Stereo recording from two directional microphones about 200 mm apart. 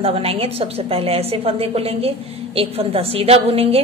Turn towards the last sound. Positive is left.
turn(degrees=-30)  # may be behind; listen again after turning